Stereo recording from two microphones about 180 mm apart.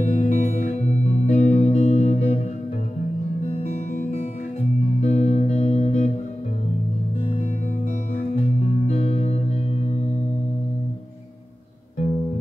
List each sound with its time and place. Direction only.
0.0 s music: 40° left (ahead or behind)
3.4 s guitar: 35° left (ahead or behind)
8.1 s music: 40° left (ahead or behind)